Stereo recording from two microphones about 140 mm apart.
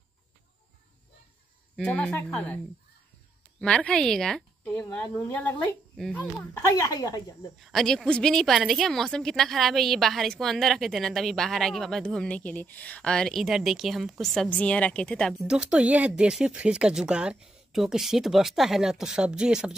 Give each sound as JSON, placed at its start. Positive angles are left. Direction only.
{"t": 1.8, "sound": "a woman's voice", "side_deg": 10}
{"t": 3.6, "sound": "a woman's voice", "side_deg": 5}
{"t": 5.9, "sound": "speech", "side_deg": 0}
{"t": 6.7, "sound": "a woman's voice", "side_deg": 25}
{"t": 7.6, "sound": "a woman's voice", "side_deg": 5}
{"t": 15.4, "sound": "a woman's voice", "side_deg": -5}